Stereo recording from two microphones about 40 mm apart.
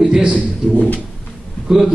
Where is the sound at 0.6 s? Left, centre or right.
Centre.